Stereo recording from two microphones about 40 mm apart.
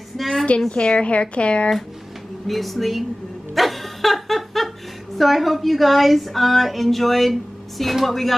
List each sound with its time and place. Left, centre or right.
0.2 s a sound: centre
0.7 s speech: left
2.4 s a woman's voice: centre
3.5 s dog: centre
5.1 s a woman's voice: centre